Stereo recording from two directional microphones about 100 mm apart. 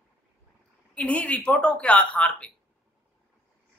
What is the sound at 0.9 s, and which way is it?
Speech, 15° left (ahead or behind).